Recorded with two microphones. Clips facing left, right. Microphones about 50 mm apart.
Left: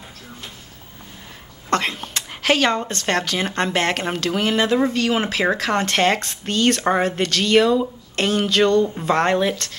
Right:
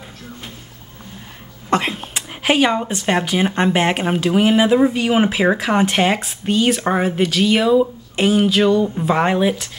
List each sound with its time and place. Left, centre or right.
1.7 s speech: centre